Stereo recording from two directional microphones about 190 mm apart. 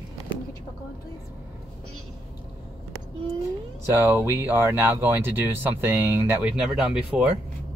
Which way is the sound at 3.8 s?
10° right (ahead or behind).